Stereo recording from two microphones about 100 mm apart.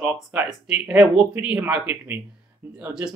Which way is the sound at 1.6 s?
15° right (ahead or behind).